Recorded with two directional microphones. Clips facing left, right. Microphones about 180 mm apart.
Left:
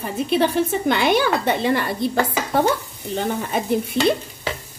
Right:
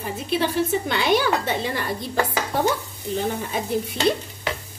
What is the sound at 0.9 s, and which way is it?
Speech, 55° left (ahead or behind).